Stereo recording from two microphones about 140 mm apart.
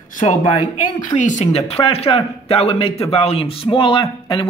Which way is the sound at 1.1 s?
60° left (ahead or behind).